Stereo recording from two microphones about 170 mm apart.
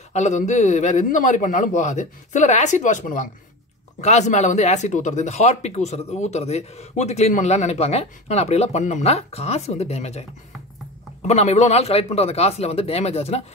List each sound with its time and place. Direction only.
0.1 s a man's voice: 40° left (ahead or behind)
11.2 s speech: 40° left (ahead or behind)